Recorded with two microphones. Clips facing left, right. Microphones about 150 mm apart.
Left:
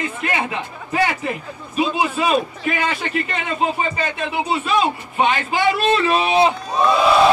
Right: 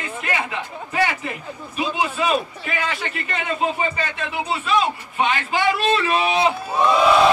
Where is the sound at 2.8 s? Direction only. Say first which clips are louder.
Left 2 dB; 30° left (ahead or behind).